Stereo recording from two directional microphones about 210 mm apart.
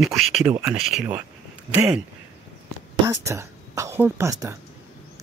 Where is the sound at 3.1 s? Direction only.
15° right (ahead or behind).